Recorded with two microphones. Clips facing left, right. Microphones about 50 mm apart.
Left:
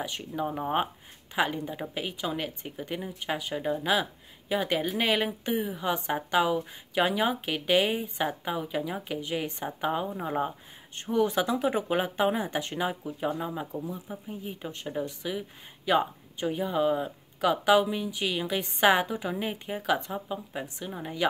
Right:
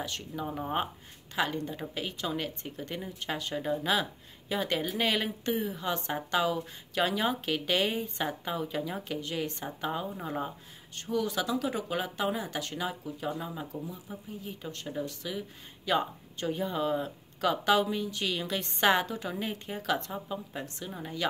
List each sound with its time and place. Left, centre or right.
0.0 s speech: centre